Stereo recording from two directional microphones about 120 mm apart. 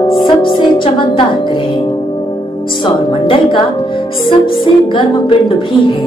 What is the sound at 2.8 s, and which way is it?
Speech, 45° left (ahead or behind).